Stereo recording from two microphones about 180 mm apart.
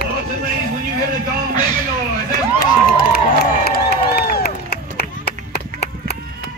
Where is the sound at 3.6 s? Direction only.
60° left (ahead or behind).